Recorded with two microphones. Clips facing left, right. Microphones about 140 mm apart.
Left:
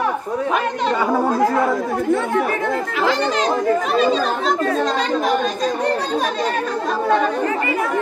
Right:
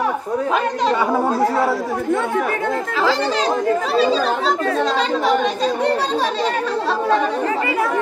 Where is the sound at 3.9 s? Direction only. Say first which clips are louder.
Right 2 dB; 30° right (ahead or behind).